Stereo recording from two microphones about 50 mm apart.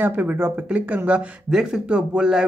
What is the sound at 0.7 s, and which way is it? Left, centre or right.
Speech, right.